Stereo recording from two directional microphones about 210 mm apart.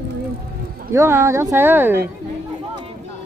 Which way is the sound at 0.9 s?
15° right (ahead or behind).